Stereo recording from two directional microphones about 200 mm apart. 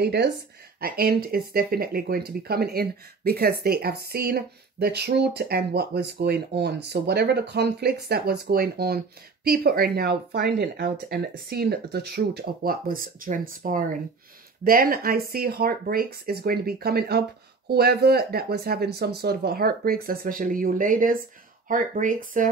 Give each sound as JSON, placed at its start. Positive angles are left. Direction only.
{"t": 0.0, "sound": "speech", "side_deg": -55}